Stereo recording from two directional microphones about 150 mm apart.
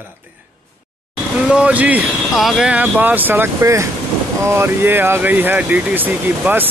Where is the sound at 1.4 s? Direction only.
5° right (ahead or behind).